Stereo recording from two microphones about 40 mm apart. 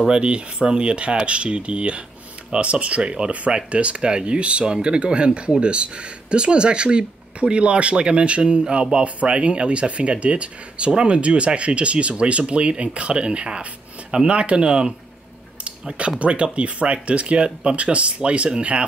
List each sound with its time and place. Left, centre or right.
0.1 s speech: right
16.0 s speech: right